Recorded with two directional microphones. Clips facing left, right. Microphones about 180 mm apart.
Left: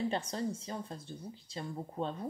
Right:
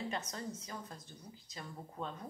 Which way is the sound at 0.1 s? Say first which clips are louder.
Left 6 dB; 30° left (ahead or behind).